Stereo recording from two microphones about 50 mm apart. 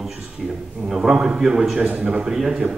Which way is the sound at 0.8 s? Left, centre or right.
Centre.